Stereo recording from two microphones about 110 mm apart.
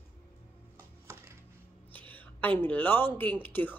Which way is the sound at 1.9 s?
15° left (ahead or behind).